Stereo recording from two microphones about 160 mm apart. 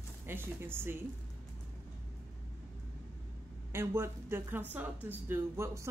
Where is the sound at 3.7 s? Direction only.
15° right (ahead or behind).